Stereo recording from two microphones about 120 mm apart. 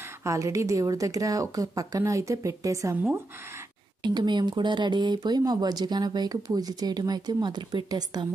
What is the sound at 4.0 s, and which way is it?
Speech, 40° right (ahead or behind).